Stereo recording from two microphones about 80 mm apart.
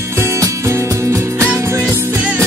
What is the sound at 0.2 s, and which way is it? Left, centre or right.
Music, right.